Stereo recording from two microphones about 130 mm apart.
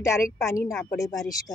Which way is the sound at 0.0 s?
20° left (ahead or behind).